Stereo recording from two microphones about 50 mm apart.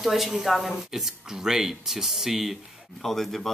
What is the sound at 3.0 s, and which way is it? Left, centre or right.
Speech, centre.